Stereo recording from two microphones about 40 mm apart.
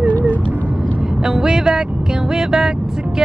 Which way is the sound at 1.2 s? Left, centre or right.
Centre.